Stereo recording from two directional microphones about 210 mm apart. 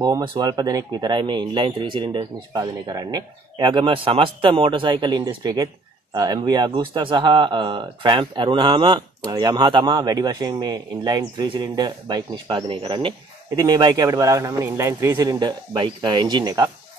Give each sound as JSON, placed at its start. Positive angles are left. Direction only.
{"t": 0.0, "sound": "a man's voice", "side_deg": -20}